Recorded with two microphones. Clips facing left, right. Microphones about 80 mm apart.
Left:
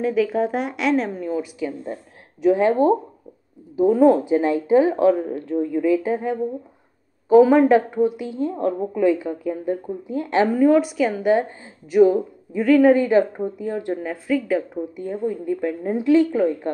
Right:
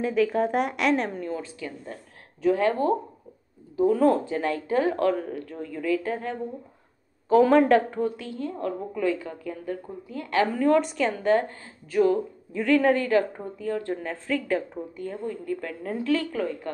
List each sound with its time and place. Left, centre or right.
0.0 s a woman's voice: centre
12.6 s speech: centre
12.9 s a woman's voice: centre